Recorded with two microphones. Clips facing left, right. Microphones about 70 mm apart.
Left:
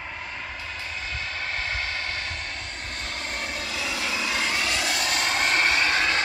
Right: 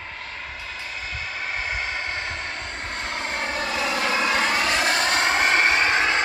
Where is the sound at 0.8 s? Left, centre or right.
Centre; by 6.2 s right.